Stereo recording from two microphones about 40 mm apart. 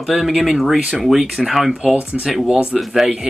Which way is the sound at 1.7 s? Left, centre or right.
Right.